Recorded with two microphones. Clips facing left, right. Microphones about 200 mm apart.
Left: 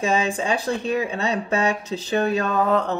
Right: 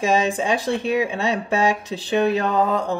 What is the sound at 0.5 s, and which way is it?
Speech, 15° right (ahead or behind).